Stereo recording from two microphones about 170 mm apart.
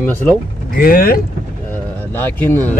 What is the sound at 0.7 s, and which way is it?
Speech, 55° left (ahead or behind).